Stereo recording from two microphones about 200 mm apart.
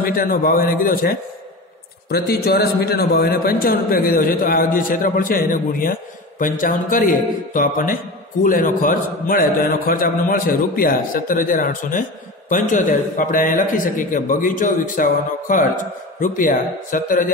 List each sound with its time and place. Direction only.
0.0 s a man's voice: 45° left (ahead or behind)